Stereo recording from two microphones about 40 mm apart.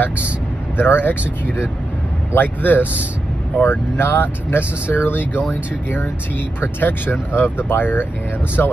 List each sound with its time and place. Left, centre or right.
0.7 s speech: left
2.3 s speech: left
3.6 s speech: left
6.6 s speech: left